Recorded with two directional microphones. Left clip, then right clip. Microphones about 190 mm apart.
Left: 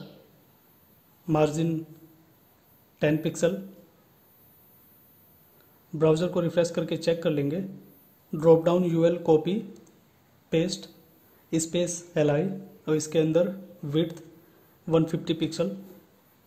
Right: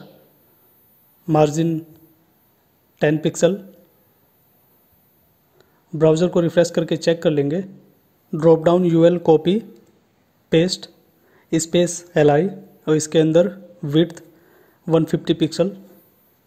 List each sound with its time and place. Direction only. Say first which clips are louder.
1.2 s speech: right 8 dB; 30° right (ahead or behind)
3.0 s speech: right 8 dB; 30° right (ahead or behind)
5.9 s speech: right 8 dB; 30° right (ahead or behind)